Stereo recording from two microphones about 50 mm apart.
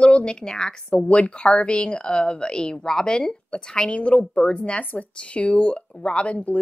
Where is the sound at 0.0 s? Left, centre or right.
Centre.